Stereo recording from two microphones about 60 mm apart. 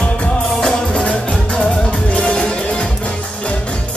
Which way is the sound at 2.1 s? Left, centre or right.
Centre.